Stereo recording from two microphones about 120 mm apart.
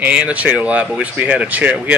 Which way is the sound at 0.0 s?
10° right (ahead or behind).